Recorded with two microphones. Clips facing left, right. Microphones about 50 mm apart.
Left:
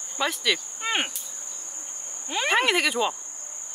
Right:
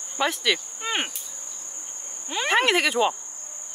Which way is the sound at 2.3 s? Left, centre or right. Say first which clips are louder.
Right 1 dB; centre.